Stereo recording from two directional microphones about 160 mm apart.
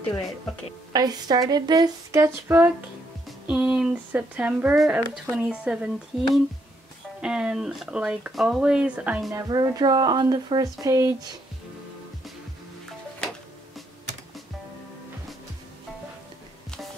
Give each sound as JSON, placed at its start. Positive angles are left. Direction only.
{"t": 0.9, "sound": "speech", "side_deg": -25}
{"t": 9.4, "sound": "speech", "side_deg": -25}